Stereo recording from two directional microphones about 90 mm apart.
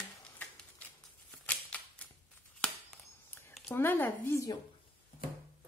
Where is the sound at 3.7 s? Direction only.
20° left (ahead or behind).